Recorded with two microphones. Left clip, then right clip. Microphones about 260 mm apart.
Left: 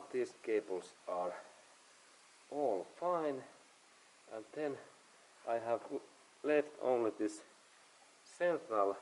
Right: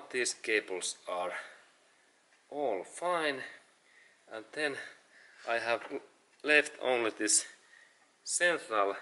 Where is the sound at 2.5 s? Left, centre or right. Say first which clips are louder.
Right 2 dB; left.